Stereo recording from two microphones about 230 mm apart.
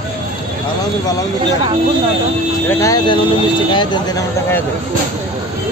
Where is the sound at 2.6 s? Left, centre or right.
Centre.